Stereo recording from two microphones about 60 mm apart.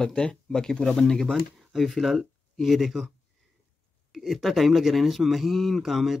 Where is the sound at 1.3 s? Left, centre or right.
Centre.